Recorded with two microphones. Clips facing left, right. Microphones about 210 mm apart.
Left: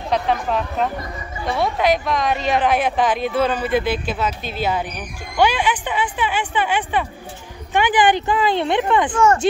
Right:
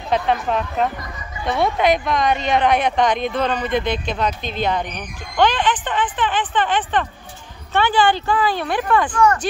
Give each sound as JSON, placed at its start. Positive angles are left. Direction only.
{"t": 0.1, "sound": "a woman's voice", "side_deg": 0}